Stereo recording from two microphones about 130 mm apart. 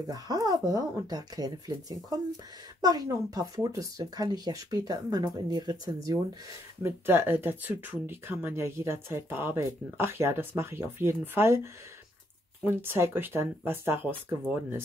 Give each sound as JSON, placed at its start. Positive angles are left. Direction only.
{"t": 0.0, "sound": "speech", "side_deg": -30}
{"t": 6.8, "sound": "speech", "side_deg": -15}